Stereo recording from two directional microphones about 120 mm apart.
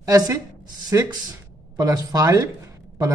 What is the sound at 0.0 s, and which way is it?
A man's voice, 30° right (ahead or behind).